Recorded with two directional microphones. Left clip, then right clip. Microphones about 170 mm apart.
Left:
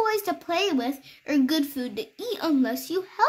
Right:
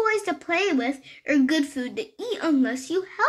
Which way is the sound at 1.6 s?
35° left (ahead or behind).